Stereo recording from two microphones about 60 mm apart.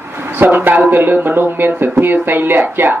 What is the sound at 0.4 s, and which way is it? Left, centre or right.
Speech, right.